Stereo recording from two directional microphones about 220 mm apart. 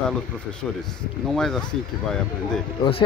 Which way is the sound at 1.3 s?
Centre (ahead or behind).